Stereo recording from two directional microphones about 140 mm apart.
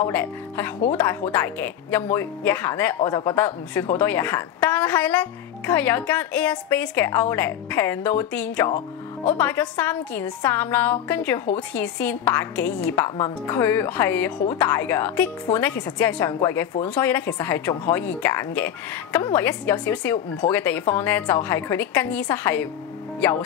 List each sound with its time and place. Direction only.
0.0 s a woman's voice: 15° left (ahead or behind)
3.0 s speech: 30° left (ahead or behind)
3.3 s a woman's voice: 15° left (ahead or behind)